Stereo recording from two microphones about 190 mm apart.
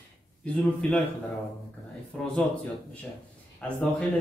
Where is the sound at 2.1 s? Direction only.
5° left (ahead or behind).